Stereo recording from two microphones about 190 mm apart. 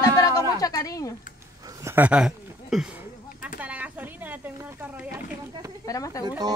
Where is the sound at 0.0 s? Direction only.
20° left (ahead or behind).